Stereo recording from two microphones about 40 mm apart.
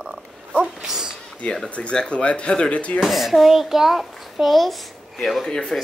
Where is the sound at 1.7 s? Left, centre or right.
Left.